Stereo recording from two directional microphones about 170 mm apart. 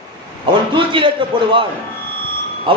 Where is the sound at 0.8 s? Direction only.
30° right (ahead or behind).